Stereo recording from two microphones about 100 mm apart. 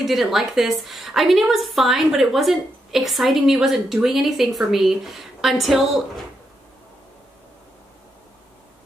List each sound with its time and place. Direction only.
0.0 s a woman's voice: centre (ahead or behind)